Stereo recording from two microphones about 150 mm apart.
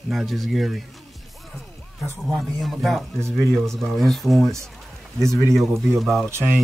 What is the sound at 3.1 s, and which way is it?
Speech, 20° right (ahead or behind).